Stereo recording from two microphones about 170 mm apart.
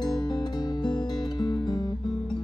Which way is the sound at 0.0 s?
25° left (ahead or behind).